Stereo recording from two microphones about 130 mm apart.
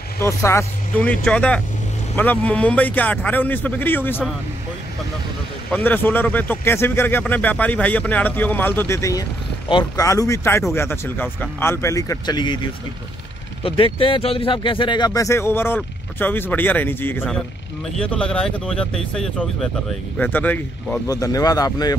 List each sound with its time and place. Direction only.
0.2 s speech: 20° left (ahead or behind)
1.0 s speech: 10° left (ahead or behind)
5.7 s speech: 15° left (ahead or behind); by 12.5 s 35° left (ahead or behind)
13.6 s speech: 45° left (ahead or behind); by 21.0 s 15° left (ahead or behind)
21.1 s speech: 25° left (ahead or behind)